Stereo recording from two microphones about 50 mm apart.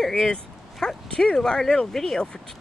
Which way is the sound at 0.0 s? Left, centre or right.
Centre.